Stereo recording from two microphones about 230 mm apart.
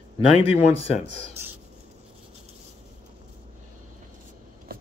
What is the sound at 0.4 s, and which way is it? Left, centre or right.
Speech, left.